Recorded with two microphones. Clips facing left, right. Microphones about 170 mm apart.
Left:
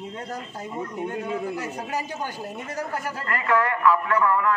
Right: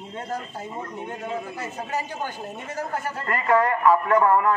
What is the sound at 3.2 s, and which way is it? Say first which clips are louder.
A man's voice: right 3 dB; 30° right (ahead or behind).